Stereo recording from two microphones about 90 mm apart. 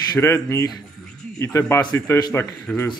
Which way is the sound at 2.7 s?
15° left (ahead or behind).